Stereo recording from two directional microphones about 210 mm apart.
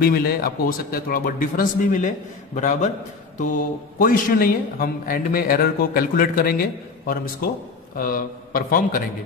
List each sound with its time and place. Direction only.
0.0 s a man's voice: 45° left (ahead or behind)